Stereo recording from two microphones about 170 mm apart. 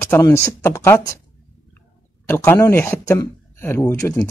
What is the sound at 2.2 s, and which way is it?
Speech, 15° left (ahead or behind).